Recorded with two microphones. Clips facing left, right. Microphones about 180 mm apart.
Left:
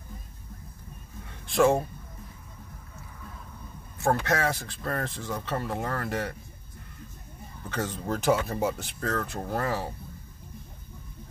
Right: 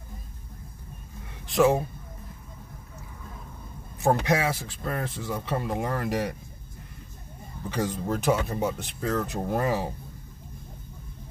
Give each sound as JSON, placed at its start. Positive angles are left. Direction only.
{"t": 1.5, "sound": "speech", "side_deg": 0}
{"t": 4.0, "sound": "speech", "side_deg": -15}
{"t": 4.5, "sound": "speech", "side_deg": -5}
{"t": 7.7, "sound": "speech", "side_deg": -15}
{"t": 8.1, "sound": "speech", "side_deg": 0}
{"t": 9.0, "sound": "speech", "side_deg": -20}